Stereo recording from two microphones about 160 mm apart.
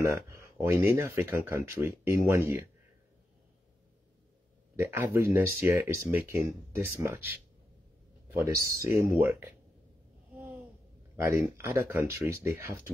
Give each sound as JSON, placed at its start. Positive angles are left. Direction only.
{"t": 0.3, "sound": "a sound", "side_deg": -15}
{"t": 0.7, "sound": "speech", "side_deg": -15}
{"t": 4.7, "sound": "speech", "side_deg": -15}
{"t": 8.4, "sound": "speech", "side_deg": -20}
{"t": 11.1, "sound": "speech", "side_deg": -15}